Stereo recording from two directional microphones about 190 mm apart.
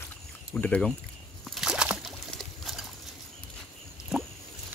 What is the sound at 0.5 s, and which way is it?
Speech, 10° left (ahead or behind).